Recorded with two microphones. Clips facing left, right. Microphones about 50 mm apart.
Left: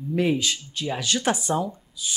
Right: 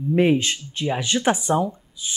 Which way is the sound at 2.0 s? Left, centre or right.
Right.